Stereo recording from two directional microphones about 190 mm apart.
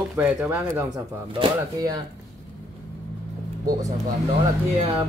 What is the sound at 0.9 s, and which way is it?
Speech, 25° right (ahead or behind).